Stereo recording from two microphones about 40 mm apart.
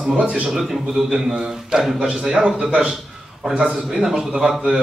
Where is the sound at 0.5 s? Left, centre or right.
Centre.